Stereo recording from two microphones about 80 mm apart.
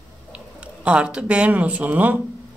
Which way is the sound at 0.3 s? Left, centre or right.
Centre.